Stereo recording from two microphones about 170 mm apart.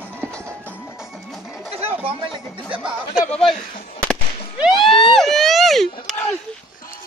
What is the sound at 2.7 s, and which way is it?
Speech, 5° right (ahead or behind).